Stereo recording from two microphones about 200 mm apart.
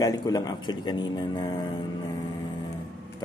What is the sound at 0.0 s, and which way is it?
Speech, 20° left (ahead or behind).